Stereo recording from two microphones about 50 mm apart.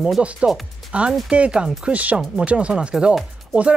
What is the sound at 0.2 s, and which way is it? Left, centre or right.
Speech, right.